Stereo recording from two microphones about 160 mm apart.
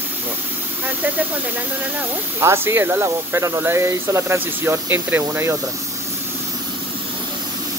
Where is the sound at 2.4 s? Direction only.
15° right (ahead or behind).